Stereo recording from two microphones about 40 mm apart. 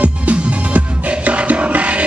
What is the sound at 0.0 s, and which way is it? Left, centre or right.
Music, right.